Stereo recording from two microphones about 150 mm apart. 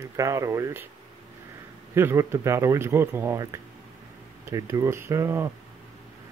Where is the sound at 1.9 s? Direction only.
15° right (ahead or behind).